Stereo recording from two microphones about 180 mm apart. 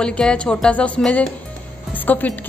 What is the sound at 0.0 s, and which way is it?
Speech, 5° left (ahead or behind).